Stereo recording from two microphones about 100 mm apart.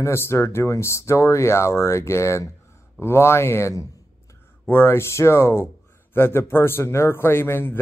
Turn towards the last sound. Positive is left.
turn(degrees=20)  # may be behind; listen again after turning